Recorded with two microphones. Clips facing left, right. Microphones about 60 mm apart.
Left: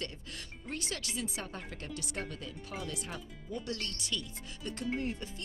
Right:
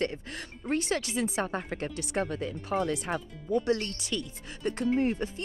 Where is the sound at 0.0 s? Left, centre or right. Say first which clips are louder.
Right 10 dB; right.